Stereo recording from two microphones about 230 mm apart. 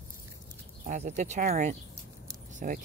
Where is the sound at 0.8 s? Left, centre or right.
Right.